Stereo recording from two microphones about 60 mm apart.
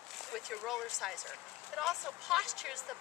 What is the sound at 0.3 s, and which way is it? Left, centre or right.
Speech, centre.